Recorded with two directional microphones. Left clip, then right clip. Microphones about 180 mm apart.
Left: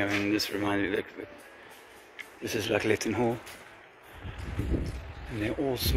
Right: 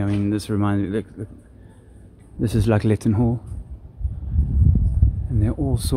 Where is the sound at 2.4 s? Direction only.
25° right (ahead or behind).